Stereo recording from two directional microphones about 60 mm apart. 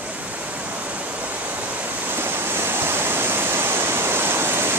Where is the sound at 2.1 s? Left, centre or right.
Right.